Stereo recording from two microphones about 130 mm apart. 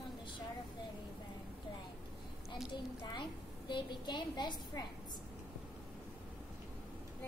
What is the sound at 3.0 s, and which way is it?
A woman's voice, 35° left (ahead or behind).